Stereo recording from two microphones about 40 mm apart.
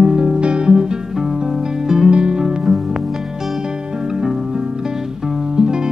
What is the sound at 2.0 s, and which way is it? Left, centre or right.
Music, right.